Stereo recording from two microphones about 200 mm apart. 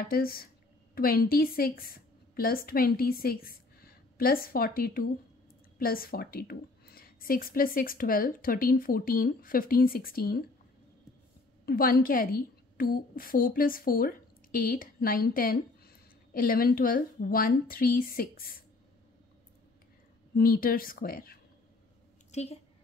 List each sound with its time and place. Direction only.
0.1 s a woman's voice: 50° left (ahead or behind)
11.6 s a woman's voice: 50° left (ahead or behind)
20.3 s a woman's voice: 45° left (ahead or behind)
22.3 s a woman's voice: 35° left (ahead or behind)